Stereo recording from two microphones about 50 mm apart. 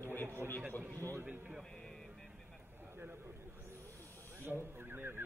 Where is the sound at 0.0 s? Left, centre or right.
Left.